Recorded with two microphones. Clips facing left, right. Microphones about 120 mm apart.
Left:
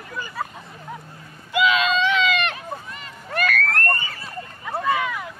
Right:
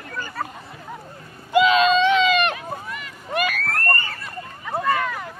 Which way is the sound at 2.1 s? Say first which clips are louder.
Right 4 dB; 20° right (ahead or behind).